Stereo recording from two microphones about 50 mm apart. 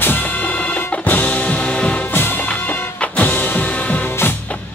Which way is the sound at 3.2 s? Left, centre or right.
Left.